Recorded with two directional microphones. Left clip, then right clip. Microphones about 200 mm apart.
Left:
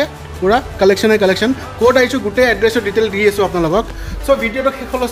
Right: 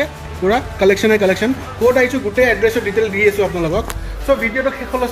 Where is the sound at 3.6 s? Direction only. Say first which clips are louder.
Left 4 dB; 40° left (ahead or behind).